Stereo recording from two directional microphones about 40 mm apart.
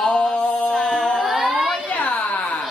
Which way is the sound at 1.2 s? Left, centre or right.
Centre.